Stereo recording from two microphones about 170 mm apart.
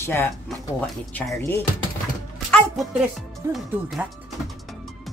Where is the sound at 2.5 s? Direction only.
Centre (ahead or behind).